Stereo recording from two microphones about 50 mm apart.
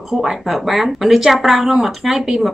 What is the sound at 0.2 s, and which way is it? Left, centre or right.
Speech, centre.